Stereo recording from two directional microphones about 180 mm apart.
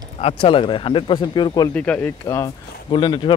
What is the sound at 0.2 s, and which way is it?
Speech, 30° left (ahead or behind).